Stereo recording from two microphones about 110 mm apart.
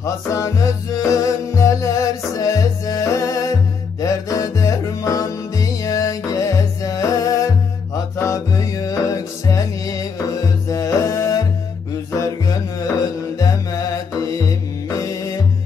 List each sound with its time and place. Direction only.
0.0 s music: 30° left (ahead or behind)
13.4 s music: 30° left (ahead or behind)